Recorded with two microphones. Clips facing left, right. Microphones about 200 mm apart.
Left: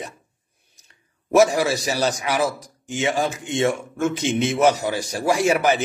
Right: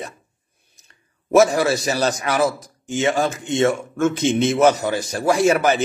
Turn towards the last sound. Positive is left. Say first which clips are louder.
# right 2 dB
turn(degrees=10)  # may be behind; listen again after turning